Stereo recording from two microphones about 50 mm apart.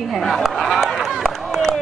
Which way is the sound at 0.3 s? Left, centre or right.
Centre.